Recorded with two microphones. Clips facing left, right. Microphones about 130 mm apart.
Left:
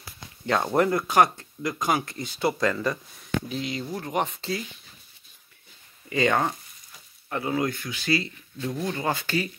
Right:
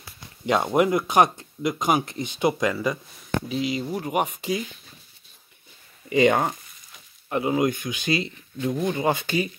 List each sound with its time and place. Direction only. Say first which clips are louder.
0.7 s speech: right 1 dB; 15° right (ahead or behind)
3.8 s speech: right 3 dB; 15° right (ahead or behind)
6.0 s speech: right 4 dB; 20° right (ahead or behind)